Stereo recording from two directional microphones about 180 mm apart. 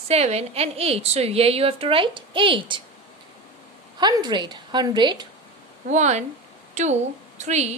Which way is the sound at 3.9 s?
25° right (ahead or behind).